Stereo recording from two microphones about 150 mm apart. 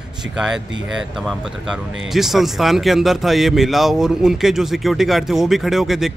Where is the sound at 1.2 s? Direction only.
Centre (ahead or behind).